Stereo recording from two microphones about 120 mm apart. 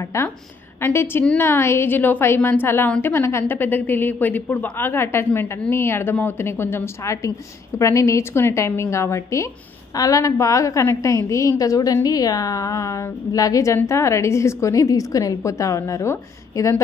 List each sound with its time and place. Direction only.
0.0 s a woman's voice: 25° left (ahead or behind)
1.5 s a woman's voice: 20° left (ahead or behind)